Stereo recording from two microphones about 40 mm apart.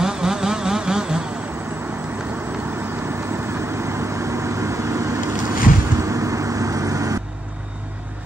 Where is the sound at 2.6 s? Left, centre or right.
Right.